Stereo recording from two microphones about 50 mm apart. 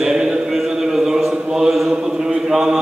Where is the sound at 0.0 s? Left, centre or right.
Centre.